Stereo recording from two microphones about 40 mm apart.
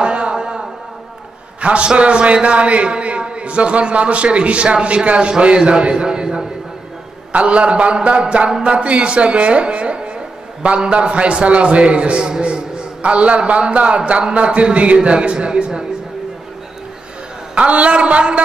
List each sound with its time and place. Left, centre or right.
0.0 s a sound: right
1.6 s a man's voice: right
7.3 s a man's voice: right
17.6 s a man's voice: right